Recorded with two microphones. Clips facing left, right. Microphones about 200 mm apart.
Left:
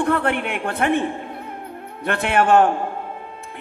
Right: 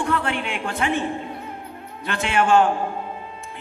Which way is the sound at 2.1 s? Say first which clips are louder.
Left 2 dB; 60° left (ahead or behind).